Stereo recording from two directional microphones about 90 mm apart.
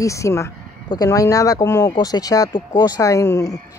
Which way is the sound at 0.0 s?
35° left (ahead or behind).